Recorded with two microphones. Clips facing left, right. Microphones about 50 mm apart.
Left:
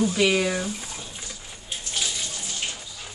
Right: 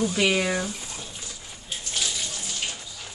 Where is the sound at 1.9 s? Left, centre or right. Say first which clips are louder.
Even; centre.